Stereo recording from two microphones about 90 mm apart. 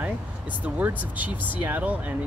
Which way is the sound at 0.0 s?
20° right (ahead or behind).